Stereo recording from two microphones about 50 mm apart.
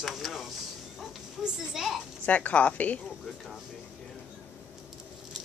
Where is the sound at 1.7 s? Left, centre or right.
Centre.